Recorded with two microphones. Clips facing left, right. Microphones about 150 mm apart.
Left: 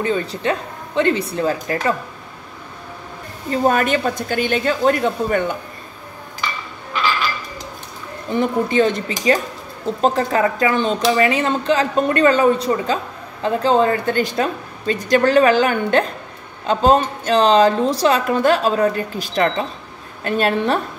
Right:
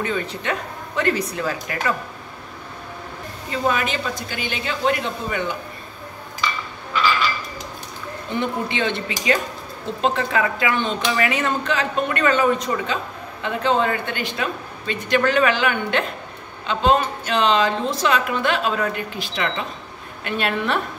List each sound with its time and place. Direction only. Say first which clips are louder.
0.0 s speech: left 5 dB; 30° left (ahead or behind)
3.4 s a woman's voice: left 6 dB; 45° left (ahead or behind)
8.3 s speech: left 6 dB; 40° left (ahead or behind)